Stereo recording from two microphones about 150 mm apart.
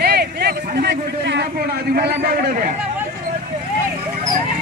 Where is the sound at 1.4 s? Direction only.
90° right.